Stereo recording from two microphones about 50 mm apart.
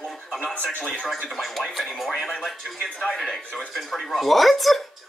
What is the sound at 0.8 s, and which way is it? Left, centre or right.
Speech, centre.